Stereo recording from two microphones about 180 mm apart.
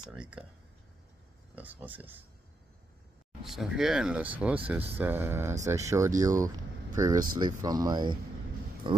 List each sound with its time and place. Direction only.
0.1 s speech: 5° right (ahead or behind)
1.5 s speech: 10° right (ahead or behind)
3.4 s speech: centre (ahead or behind); by 9.0 s 25° right (ahead or behind)